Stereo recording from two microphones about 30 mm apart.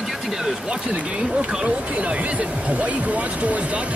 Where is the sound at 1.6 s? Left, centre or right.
Right.